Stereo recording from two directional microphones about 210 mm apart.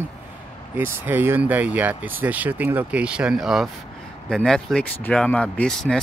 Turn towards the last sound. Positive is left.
turn(degrees=0)  # may be behind; listen again after turning